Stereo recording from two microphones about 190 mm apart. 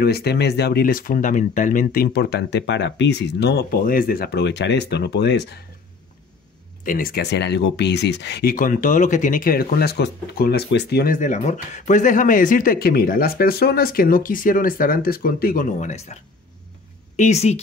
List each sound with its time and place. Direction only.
0.0 s speech: 55° left (ahead or behind)
6.8 s speech: 50° left (ahead or behind)
17.2 s a woman's voice: 35° left (ahead or behind)